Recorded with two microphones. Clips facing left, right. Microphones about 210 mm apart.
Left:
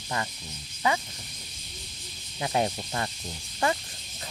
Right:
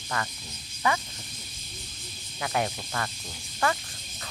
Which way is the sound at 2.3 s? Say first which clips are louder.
Left 2 dB; 25° left (ahead or behind).